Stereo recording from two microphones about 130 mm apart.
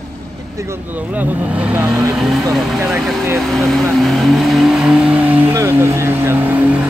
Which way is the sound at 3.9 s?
Centre (ahead or behind).